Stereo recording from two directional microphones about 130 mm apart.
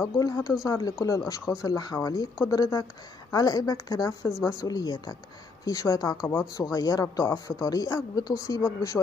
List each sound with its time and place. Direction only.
0.2 s speech: 30° left (ahead or behind)